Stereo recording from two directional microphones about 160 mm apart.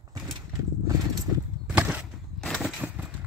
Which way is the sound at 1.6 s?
10° right (ahead or behind).